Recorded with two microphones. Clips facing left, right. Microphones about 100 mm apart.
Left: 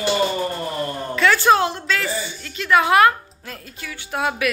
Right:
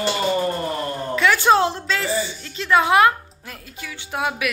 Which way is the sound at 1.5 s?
30° right (ahead or behind).